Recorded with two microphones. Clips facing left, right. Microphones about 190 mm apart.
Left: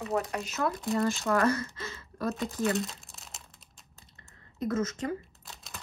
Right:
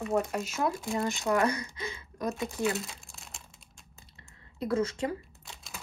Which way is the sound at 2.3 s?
Centre (ahead or behind).